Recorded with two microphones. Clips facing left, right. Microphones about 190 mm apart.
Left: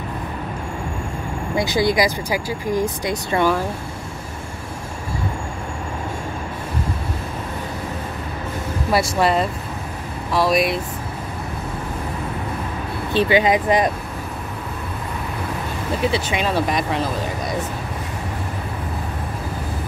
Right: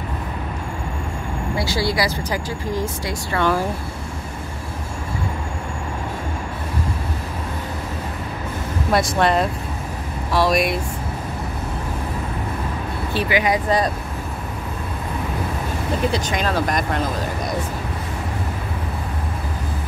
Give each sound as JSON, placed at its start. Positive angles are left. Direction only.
{"t": 1.6, "sound": "speech", "side_deg": 20}
{"t": 8.9, "sound": "speech", "side_deg": 5}
{"t": 13.1, "sound": "speech", "side_deg": 25}
{"t": 16.1, "sound": "speech", "side_deg": 5}